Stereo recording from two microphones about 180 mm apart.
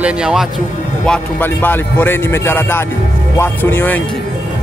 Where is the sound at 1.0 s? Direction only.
10° left (ahead or behind).